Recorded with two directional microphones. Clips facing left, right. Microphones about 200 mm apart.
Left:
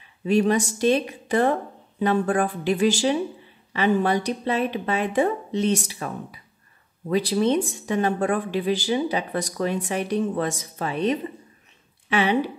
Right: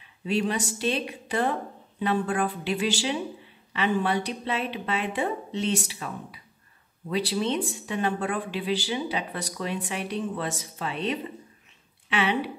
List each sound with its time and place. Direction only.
0.3 s speech: 45° left (ahead or behind)